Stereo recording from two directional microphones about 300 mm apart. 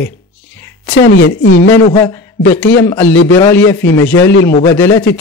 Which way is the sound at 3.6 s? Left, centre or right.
Left.